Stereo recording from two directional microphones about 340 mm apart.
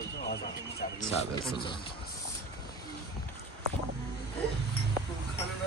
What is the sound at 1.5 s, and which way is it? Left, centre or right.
Speech, centre.